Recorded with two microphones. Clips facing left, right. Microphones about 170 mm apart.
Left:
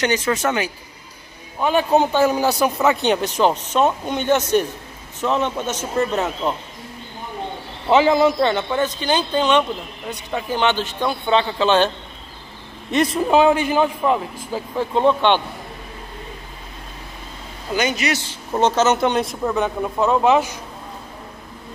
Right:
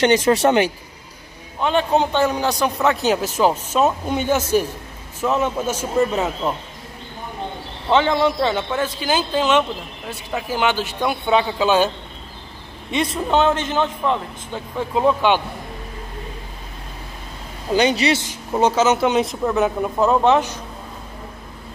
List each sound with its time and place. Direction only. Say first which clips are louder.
0.0 s speech: right 5 dB; 35° right (ahead or behind)
1.6 s speech: left 1 dB; 5° left (ahead or behind)
7.9 s speech: left 2 dB; 5° left (ahead or behind)
13.3 s speech: left 2 dB; 10° left (ahead or behind)
17.7 s speech: right 4 dB; 30° right (ahead or behind)
18.5 s speech: even; 10° right (ahead or behind); by 20.6 s 10° left (ahead or behind)